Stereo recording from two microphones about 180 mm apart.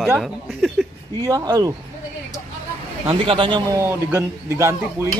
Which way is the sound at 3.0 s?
30° right (ahead or behind).